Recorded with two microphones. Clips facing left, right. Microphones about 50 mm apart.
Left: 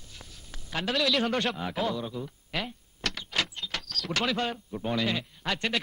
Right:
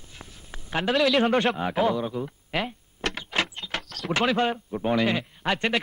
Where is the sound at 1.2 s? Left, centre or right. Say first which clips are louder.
Right 6 dB; right.